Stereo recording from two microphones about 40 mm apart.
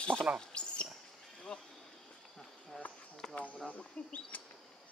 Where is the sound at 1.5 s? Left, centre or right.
Left.